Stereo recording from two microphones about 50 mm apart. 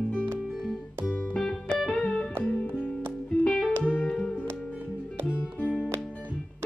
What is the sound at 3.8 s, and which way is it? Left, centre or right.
Music, left.